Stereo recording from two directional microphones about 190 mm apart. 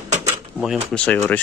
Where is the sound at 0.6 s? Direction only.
5° left (ahead or behind).